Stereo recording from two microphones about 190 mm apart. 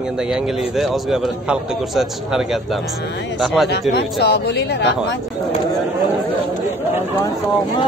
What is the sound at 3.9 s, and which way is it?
Speech, 65° left (ahead or behind).